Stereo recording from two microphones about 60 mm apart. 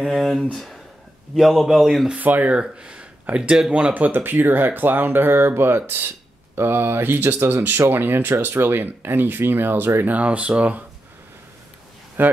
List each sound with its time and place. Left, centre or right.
0.0 s a man's voice: centre
2.1 s speech: right
2.5 s speech: centre
3.9 s speech: right
10.1 s speech: right
12.2 s speech: right